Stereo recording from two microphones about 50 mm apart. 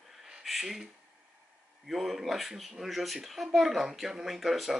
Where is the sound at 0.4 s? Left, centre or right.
Centre.